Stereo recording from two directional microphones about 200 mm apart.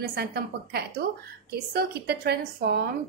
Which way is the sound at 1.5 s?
55° right (ahead or behind).